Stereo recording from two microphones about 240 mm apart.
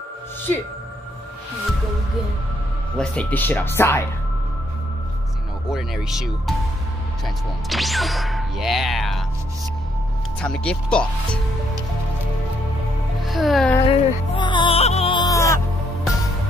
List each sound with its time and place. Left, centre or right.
3.0 s speech: centre
5.7 s speech: centre
7.7 s speech: centre
10.4 s speech: centre
13.2 s music: centre
13.8 s music: left